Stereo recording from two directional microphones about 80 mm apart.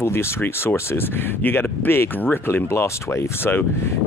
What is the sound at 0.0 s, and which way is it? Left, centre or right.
Speech, left.